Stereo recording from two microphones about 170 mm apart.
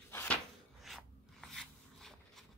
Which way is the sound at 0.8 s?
Centre (ahead or behind).